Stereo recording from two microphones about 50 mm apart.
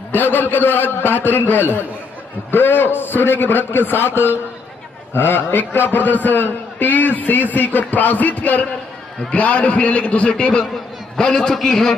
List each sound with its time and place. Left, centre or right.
0.1 s a man's voice: left; by 11.9 s centre